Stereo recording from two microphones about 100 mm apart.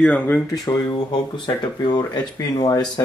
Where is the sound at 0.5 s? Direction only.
40° left (ahead or behind).